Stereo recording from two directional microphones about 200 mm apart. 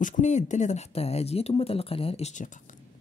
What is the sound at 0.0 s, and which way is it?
Speech, 40° left (ahead or behind).